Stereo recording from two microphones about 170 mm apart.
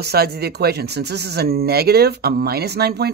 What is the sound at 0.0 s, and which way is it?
Speech, 70° right (ahead or behind).